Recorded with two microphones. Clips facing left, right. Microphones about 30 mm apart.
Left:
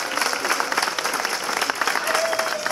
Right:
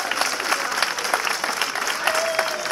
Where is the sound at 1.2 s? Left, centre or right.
Right.